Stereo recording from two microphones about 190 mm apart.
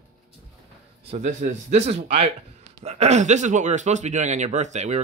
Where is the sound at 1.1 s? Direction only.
40° right (ahead or behind).